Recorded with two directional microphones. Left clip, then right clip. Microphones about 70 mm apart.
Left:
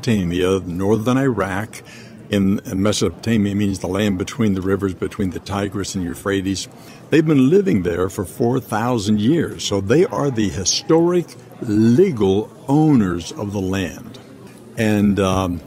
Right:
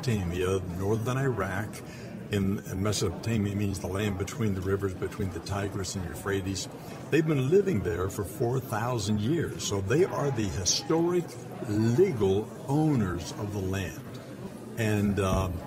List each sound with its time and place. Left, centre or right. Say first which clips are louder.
0.0 s speech: left 11 dB; left